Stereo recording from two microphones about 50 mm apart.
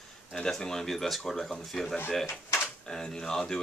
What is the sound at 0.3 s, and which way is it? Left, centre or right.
Speech, centre.